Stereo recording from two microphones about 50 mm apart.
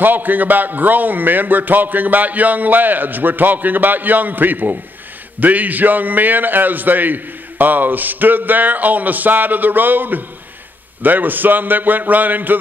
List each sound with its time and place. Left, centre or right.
0.0 s a man's voice: right